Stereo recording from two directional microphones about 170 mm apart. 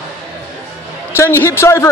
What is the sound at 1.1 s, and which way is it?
Speech, 15° left (ahead or behind).